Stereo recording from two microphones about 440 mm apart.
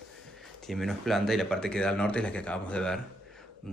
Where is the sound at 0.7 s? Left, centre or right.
Centre.